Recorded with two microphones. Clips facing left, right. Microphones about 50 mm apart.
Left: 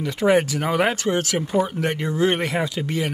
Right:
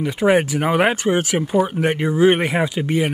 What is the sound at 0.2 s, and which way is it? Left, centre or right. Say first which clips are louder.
Speech: right 2 dB; centre.